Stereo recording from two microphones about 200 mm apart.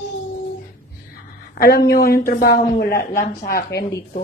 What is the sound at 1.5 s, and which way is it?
Speech, 50° left (ahead or behind).